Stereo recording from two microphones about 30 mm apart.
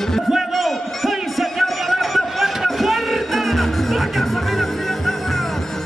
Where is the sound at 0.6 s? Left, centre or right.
Centre.